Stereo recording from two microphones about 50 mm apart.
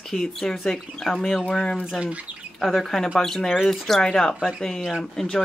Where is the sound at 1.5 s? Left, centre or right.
Centre.